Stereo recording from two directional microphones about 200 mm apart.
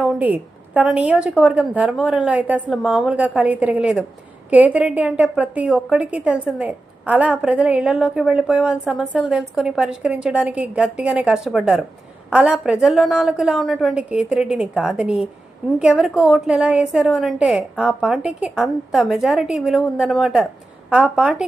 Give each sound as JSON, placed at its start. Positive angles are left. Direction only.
{"t": 0.0, "sound": "a woman's voice", "side_deg": -5}